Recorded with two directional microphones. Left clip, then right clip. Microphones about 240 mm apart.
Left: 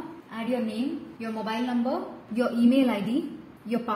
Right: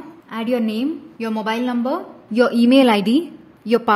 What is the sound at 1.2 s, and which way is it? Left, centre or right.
Speech, right.